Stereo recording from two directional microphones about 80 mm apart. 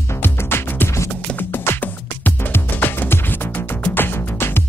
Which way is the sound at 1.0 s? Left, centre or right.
Left.